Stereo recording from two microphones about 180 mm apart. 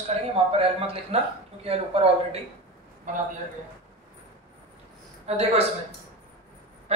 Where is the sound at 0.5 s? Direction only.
30° right (ahead or behind).